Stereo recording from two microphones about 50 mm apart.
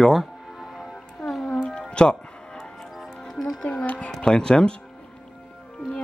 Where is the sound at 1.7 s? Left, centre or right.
Centre.